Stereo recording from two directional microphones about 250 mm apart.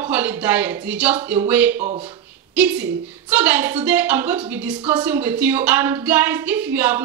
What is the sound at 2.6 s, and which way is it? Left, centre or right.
A woman's voice, centre.